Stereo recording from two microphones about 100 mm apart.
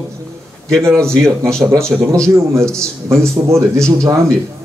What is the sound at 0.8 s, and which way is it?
Speech, 30° right (ahead or behind).